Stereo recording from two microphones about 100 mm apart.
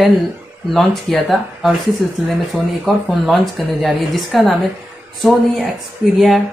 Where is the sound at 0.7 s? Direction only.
5° left (ahead or behind).